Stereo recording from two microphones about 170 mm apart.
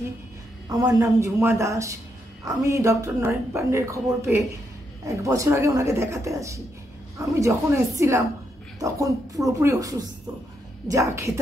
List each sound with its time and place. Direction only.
0.8 s a woman's voice: 20° right (ahead or behind)